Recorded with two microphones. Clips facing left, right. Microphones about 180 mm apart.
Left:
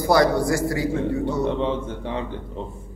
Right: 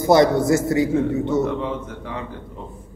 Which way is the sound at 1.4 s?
30° left (ahead or behind).